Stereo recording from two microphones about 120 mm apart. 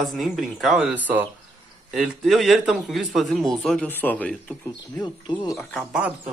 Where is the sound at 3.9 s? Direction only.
15° left (ahead or behind).